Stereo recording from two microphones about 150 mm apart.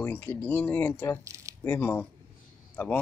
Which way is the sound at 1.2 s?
20° right (ahead or behind).